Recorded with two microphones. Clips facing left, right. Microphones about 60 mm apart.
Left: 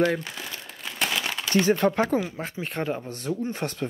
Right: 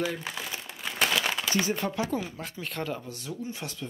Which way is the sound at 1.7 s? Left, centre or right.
Left.